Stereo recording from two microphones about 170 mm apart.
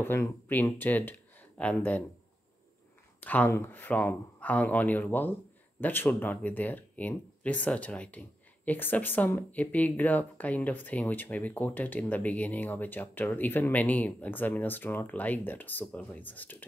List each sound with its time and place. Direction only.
0.0 s speech: 15° left (ahead or behind)
3.2 s speech: 10° left (ahead or behind)